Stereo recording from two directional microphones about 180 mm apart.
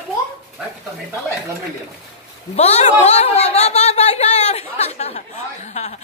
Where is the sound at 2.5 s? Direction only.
40° left (ahead or behind).